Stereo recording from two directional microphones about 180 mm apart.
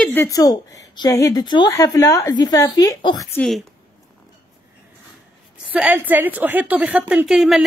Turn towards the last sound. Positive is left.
turn(degrees=0)  # may be behind; listen again after turning